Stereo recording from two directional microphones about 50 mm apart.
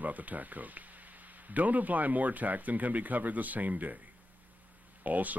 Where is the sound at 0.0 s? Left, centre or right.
Right.